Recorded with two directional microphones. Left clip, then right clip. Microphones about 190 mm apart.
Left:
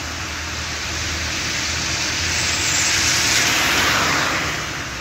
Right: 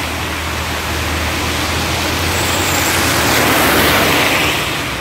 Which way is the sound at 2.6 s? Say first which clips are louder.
Right 3 dB; 50° right (ahead or behind).